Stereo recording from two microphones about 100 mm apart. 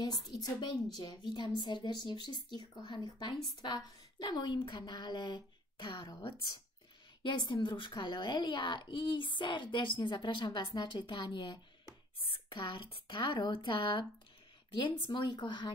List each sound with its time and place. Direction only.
0.0 s a child's voice: 40° left (ahead or behind)